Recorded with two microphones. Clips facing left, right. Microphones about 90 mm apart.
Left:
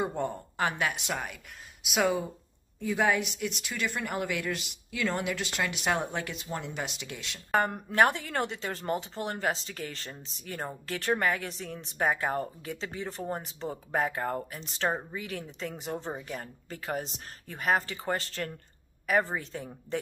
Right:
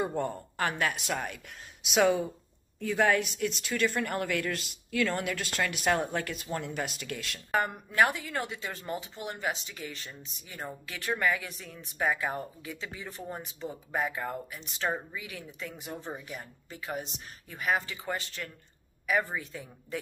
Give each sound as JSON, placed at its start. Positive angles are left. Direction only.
{"t": 0.2, "sound": "speech", "side_deg": 15}
{"t": 1.1, "sound": "speech", "side_deg": 5}
{"t": 7.5, "sound": "speech", "side_deg": 40}